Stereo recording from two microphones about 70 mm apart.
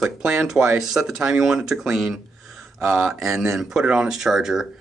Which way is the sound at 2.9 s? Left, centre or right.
Right.